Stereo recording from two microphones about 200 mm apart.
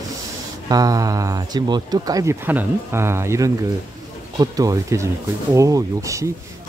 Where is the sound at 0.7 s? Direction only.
20° right (ahead or behind).